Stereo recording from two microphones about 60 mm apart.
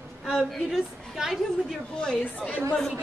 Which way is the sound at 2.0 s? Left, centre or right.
Centre.